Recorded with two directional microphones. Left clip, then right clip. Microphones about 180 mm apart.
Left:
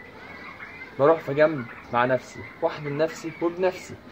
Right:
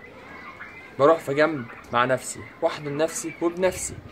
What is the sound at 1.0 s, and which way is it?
Speech, 35° right (ahead or behind).